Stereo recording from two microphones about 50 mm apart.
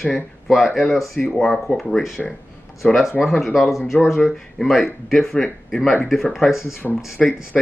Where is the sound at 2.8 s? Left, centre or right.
Left.